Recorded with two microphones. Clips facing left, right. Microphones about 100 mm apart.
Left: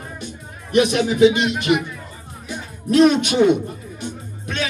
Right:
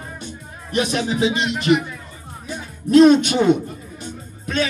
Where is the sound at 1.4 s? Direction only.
5° left (ahead or behind).